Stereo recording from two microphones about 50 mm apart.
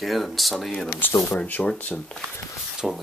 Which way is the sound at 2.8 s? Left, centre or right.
Centre.